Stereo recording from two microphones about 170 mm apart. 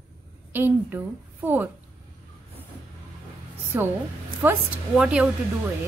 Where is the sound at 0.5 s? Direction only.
10° right (ahead or behind).